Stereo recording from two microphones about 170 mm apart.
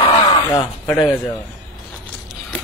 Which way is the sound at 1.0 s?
10° left (ahead or behind).